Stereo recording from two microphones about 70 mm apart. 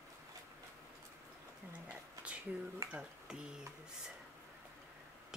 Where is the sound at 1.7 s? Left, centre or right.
Centre.